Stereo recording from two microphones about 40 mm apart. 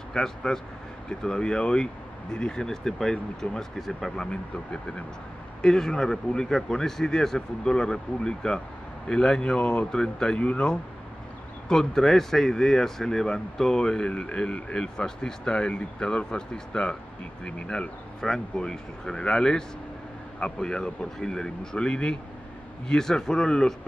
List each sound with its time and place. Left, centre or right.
0.1 s speech: centre
4.3 s speech: left
5.6 s speech: centre
11.7 s speech: centre
18.2 s speech: centre